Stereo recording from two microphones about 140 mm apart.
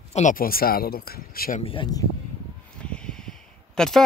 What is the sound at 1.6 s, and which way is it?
Speech, 35° left (ahead or behind).